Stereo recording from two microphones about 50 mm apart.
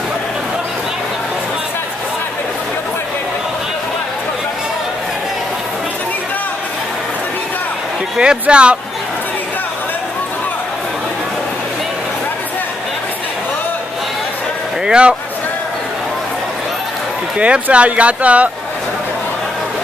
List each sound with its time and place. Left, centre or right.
8.2 s speech: centre
14.9 s speech: right
17.4 s speech: right